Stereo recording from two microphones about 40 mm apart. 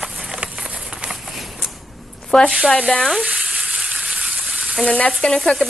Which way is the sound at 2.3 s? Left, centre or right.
Left.